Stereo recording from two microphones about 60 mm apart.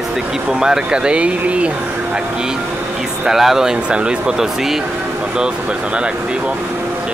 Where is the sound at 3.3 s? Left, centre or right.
Centre.